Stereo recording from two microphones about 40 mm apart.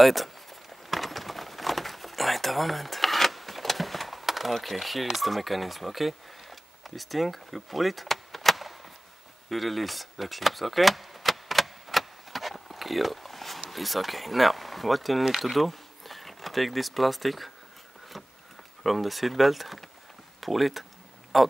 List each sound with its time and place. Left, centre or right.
0.0 s a sound: centre
9.5 s vehicle: centre
18.8 s speech: centre